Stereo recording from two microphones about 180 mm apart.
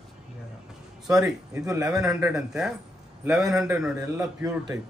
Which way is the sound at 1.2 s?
15° right (ahead or behind).